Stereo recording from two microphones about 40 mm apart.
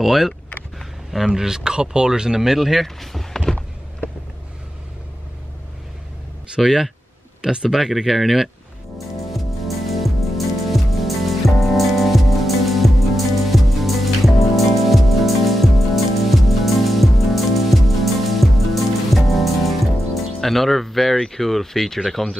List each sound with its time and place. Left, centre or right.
0.0 s speech: centre
6.5 s speech: centre
7.7 s speech: centre
8.9 s music: centre
20.3 s speech: centre